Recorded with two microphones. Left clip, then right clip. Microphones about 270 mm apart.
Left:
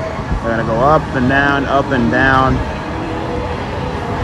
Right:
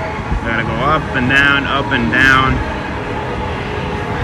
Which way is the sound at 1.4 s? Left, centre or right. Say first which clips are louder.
Right 1 dB; centre.